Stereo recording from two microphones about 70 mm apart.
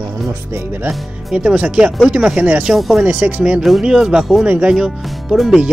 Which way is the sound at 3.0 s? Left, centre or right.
Centre.